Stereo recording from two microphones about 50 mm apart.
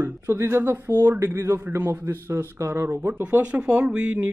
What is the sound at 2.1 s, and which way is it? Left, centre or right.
Speech, right.